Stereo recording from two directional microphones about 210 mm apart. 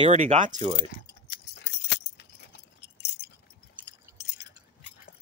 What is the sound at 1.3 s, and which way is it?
Keys jangling, 55° left (ahead or behind).